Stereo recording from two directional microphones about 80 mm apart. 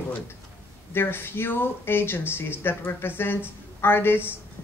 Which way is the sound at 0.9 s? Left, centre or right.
Left.